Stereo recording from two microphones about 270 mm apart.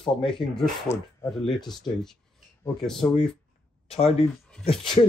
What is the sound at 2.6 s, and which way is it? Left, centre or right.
Speech, centre.